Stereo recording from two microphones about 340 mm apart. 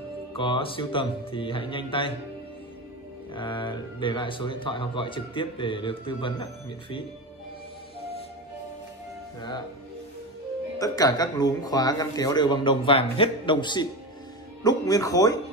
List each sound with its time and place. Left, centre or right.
0.3 s speech: centre
3.3 s speech: centre
10.8 s speech: centre